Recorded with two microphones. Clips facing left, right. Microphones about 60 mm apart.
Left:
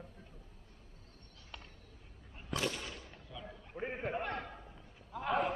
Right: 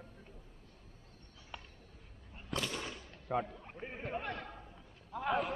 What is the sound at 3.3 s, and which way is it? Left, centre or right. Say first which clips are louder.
Speech: right 16 dB; right.